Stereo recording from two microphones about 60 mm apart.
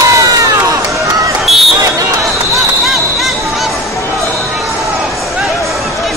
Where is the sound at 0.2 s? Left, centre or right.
Right.